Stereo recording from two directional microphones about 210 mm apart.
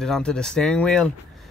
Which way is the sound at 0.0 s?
5° left (ahead or behind).